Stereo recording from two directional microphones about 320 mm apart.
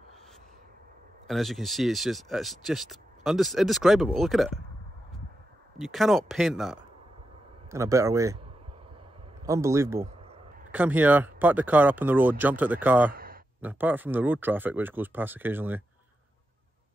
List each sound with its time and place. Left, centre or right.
1.2 s speech: centre
5.8 s speech: centre
9.4 s speech: centre
13.1 s a sound: right
13.6 s speech: centre